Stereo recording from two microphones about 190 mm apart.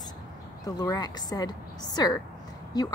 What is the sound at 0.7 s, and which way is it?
A woman's voice, 20° left (ahead or behind).